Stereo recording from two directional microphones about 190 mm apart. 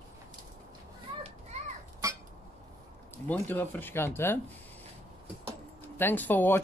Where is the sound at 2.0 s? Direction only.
15° right (ahead or behind).